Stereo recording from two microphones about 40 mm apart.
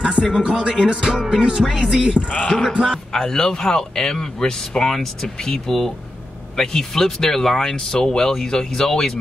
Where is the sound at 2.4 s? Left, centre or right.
Centre.